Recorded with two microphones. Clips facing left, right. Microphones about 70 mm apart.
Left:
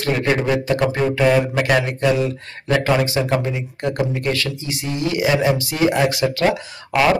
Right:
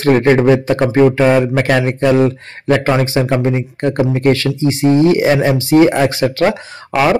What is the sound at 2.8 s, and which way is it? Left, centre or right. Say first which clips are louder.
Speech: right 4 dB; right.